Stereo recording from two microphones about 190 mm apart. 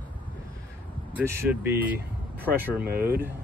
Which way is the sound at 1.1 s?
15° right (ahead or behind).